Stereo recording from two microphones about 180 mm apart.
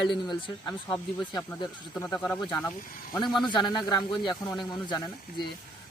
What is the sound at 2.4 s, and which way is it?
Speech, 20° left (ahead or behind).